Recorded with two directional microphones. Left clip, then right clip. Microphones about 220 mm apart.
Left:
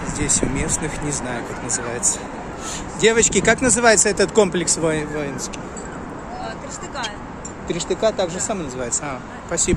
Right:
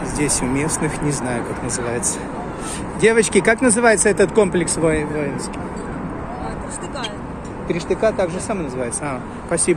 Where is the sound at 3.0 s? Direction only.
10° left (ahead or behind).